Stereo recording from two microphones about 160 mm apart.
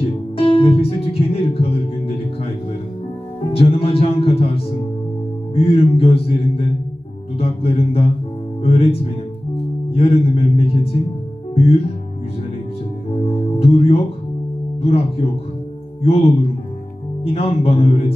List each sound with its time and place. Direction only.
0.4 s music: 35° left (ahead or behind)
3.5 s music: 35° left (ahead or behind)
8.6 s speech: 35° left (ahead or behind)
9.8 s music: 35° left (ahead or behind)
13.2 s music: 35° left (ahead or behind)
14.8 s speech: 35° left (ahead or behind)
17.2 s music: 35° left (ahead or behind)